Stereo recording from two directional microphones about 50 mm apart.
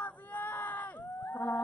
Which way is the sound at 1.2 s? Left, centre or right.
Left.